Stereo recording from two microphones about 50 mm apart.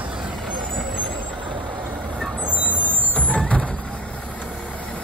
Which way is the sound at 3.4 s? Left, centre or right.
Left.